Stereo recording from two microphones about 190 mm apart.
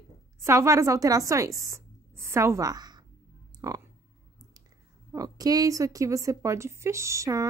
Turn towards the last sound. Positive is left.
turn(degrees=-15)  # may be behind; listen again after turning